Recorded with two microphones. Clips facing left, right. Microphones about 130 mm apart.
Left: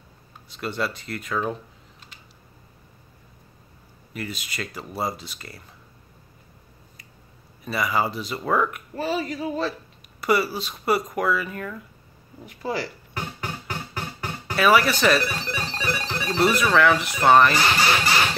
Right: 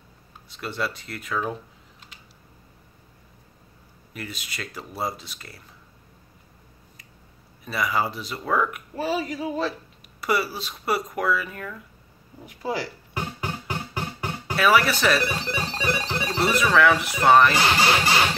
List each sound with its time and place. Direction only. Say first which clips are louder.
0.5 s speech: left 2 dB; centre (ahead or behind)
4.1 s speech: left 3 dB; centre (ahead or behind)
7.6 s speech: left 1 dB; centre (ahead or behind)
12.4 s music: even; 10° right (ahead or behind)
14.5 s speech: left 1 dB; centre (ahead or behind)
15.8 s music: right 2 dB; 20° right (ahead or behind)
16.3 s speech: left 1 dB; centre (ahead or behind)
17.6 s speech: right 1 dB; 20° right (ahead or behind)